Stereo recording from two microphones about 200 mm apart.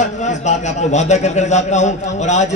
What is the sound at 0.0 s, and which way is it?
A man's voice, 35° left (ahead or behind).